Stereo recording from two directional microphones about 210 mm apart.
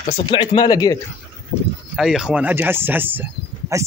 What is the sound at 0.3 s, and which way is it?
Speech, 20° left (ahead or behind).